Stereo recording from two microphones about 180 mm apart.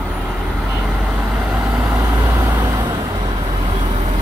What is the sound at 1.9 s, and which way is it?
Vehicle, 20° right (ahead or behind).